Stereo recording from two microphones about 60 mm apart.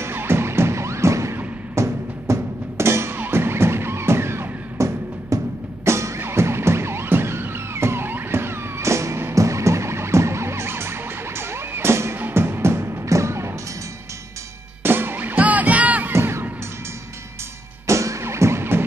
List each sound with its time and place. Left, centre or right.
0.0 s music: right
14.8 s music: right
16.1 s music: right
17.8 s music: right